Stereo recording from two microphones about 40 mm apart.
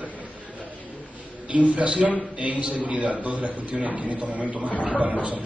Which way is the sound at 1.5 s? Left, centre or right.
Right.